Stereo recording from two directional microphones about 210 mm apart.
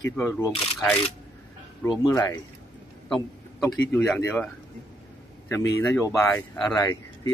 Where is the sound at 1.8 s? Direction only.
20° left (ahead or behind).